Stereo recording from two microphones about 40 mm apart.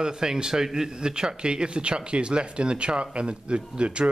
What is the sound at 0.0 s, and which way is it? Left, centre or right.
Speech, centre.